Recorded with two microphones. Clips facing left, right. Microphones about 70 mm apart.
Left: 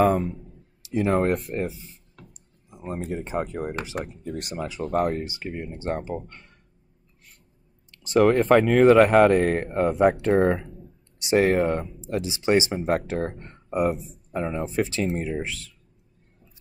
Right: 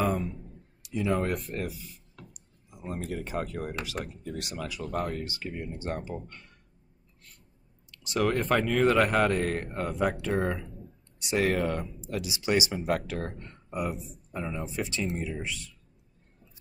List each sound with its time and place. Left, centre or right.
0.0 s speech: left
1.5 s speech: left
2.1 s a sound: left
3.8 s speech: left
4.2 s speech: left
4.6 s speech: left
5.2 s speech: left
7.9 s speech: left